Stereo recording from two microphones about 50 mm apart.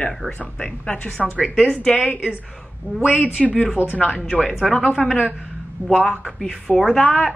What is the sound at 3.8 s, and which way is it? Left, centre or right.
Speech, left.